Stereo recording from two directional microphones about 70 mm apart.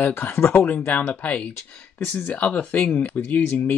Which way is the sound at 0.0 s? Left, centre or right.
Left.